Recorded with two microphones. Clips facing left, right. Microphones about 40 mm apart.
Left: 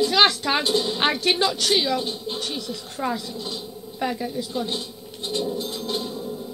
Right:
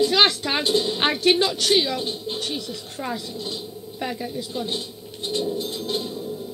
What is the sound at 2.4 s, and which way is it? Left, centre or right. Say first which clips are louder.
A child's voice: even; right.